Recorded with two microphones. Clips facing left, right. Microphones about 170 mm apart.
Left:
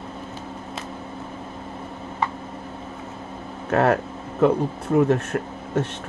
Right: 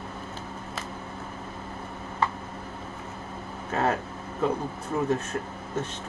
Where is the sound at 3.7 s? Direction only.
65° left (ahead or behind).